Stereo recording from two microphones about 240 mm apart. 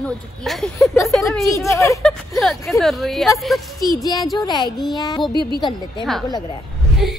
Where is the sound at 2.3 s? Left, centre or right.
Centre.